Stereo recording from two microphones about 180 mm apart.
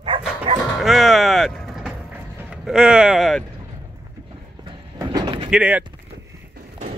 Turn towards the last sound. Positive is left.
turn(degrees=-5)  # may be behind; listen again after turning